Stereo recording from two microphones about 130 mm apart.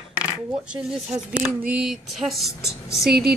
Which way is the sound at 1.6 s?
10° right (ahead or behind).